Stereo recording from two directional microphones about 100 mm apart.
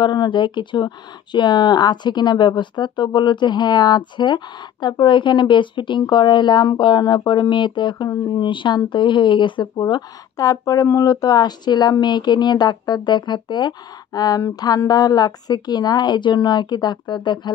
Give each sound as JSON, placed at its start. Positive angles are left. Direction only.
{"t": 0.0, "sound": "speech", "side_deg": 45}
{"t": 10.4, "sound": "speech", "side_deg": 35}
{"t": 14.5, "sound": "a sound", "side_deg": 40}
{"t": 14.9, "sound": "speech", "side_deg": 40}